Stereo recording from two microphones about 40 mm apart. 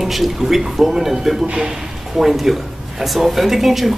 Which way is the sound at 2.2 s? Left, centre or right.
Centre.